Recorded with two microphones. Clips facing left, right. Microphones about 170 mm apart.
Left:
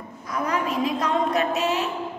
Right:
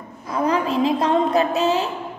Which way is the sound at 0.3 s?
30° right (ahead or behind).